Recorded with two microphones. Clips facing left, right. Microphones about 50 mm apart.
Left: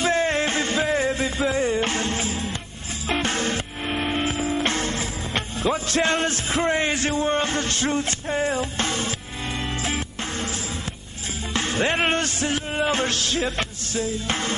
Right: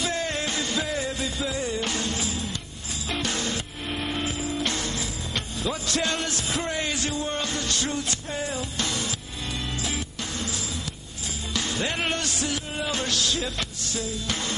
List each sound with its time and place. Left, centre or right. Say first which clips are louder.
0.0 s music: left 7 dB; left
11.5 s speech: left 6 dB; left